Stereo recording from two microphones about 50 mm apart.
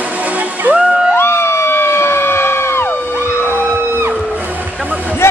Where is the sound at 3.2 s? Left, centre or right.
Left.